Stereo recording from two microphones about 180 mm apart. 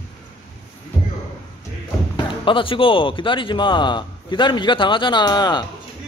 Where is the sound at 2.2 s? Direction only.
30° left (ahead or behind).